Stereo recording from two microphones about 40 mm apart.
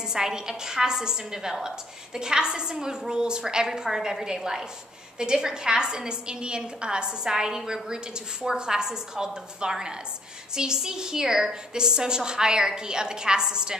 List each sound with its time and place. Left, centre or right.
0.1 s a woman's voice: centre